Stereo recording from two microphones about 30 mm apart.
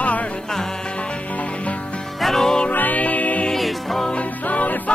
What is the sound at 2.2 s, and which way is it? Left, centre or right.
Music, centre.